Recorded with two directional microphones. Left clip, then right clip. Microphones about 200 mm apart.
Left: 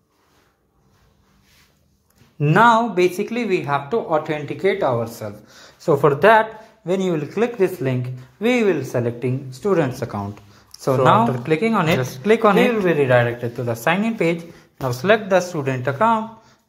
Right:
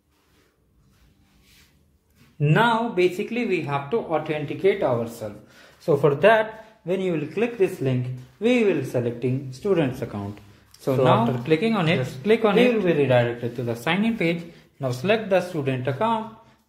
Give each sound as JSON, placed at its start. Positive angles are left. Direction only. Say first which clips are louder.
{"t": 2.3, "sound": "speech", "louder": "left 7 dB", "side_deg": 15}